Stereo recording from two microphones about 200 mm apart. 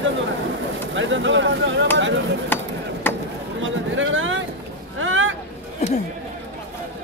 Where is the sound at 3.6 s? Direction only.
75° right (ahead or behind).